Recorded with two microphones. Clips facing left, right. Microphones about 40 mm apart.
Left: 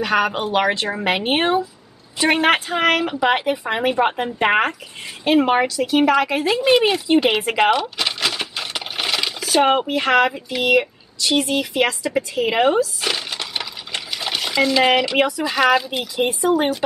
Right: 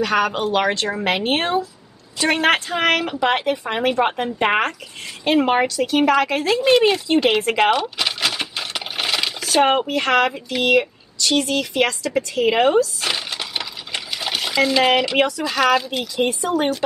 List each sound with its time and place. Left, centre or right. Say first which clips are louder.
0.0 s a woman's voice: even; centre
8.0 s coin: even; centre
12.2 s a sound: right 1 dB; centre
15.2 s a woman's voice: left 1 dB; centre